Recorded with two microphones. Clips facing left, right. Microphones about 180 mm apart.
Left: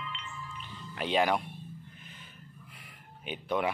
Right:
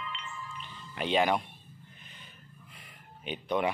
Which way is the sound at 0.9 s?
5° left (ahead or behind).